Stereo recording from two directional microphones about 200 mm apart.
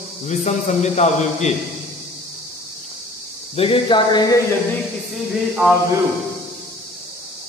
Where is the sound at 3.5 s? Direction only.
25° left (ahead or behind).